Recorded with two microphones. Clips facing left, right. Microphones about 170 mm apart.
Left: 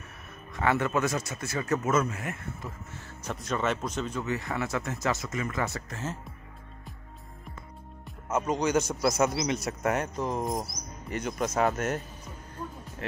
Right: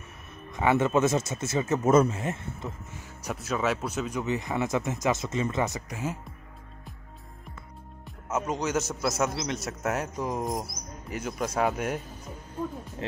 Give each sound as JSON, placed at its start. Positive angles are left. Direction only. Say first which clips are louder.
{"t": 0.5, "sound": "speech", "louder": "right 3 dB", "side_deg": -20}
{"t": 2.9, "sound": "speech", "louder": "right 1 dB", "side_deg": -10}
{"t": 8.3, "sound": "a man's voice", "louder": "left 2 dB", "side_deg": -5}